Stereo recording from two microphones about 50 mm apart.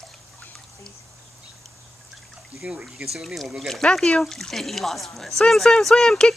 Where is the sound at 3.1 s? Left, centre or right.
Centre.